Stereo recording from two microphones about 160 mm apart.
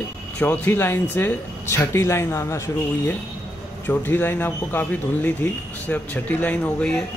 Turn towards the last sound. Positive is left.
turn(degrees=10)  # may be behind; listen again after turning